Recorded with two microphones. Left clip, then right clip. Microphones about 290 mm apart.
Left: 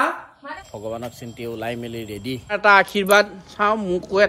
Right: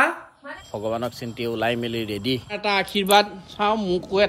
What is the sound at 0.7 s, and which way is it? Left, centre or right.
Speech, right.